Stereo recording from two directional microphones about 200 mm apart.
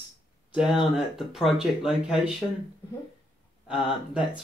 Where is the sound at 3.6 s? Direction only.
5° right (ahead or behind).